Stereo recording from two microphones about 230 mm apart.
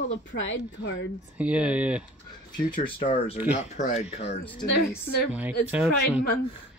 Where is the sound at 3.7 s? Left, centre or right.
Left.